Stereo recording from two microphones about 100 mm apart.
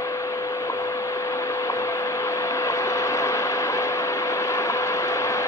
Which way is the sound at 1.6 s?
30° left (ahead or behind).